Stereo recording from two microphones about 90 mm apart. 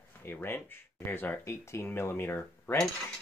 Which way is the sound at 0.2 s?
25° left (ahead or behind).